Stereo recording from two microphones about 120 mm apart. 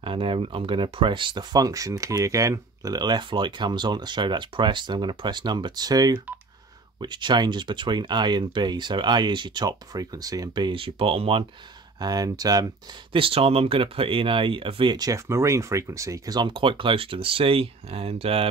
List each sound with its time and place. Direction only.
0.0 s speech: 45° right (ahead or behind)
12.0 s speech: 35° right (ahead or behind)
13.1 s speech: 50° right (ahead or behind)
15.0 s speech: 25° right (ahead or behind); by 18.5 s 50° right (ahead or behind)